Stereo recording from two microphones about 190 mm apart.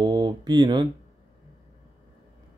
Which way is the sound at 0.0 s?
20° right (ahead or behind).